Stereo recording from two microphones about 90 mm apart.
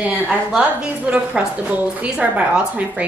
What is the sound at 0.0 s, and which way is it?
A woman's voice, 15° right (ahead or behind).